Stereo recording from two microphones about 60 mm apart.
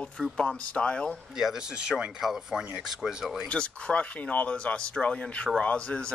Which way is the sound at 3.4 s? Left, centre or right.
Centre.